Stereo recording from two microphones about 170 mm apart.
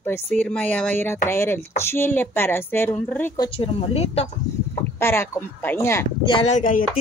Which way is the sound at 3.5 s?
35° left (ahead or behind).